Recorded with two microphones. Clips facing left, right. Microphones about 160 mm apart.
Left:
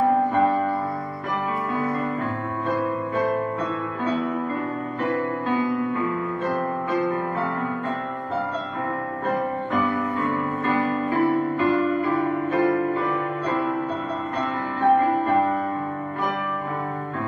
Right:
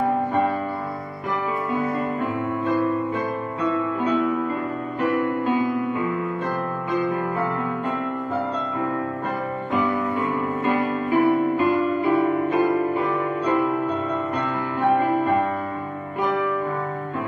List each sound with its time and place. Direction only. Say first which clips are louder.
10.6 s music: even; 15° right (ahead or behind)